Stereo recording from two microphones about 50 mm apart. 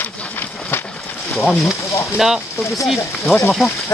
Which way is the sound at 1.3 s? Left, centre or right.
Centre.